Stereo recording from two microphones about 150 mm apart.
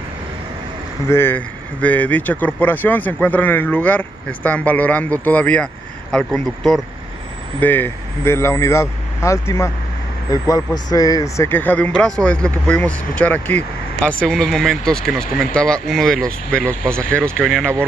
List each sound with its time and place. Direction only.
1.0 s speech: 15° left (ahead or behind)
7.6 s speech: 15° left (ahead or behind)